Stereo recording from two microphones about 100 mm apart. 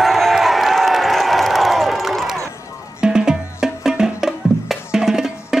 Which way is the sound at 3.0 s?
5° right (ahead or behind).